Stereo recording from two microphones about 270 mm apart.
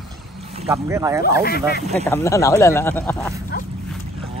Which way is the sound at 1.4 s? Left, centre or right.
Left.